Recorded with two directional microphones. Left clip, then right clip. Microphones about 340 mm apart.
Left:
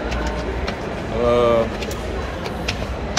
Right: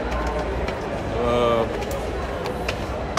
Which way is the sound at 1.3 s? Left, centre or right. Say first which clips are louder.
Left 4 dB; centre.